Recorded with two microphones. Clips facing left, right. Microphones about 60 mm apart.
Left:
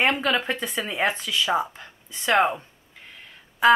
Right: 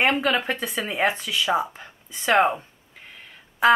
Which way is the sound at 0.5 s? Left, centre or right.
Centre.